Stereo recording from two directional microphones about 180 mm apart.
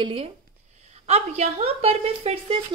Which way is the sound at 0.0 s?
30° right (ahead or behind).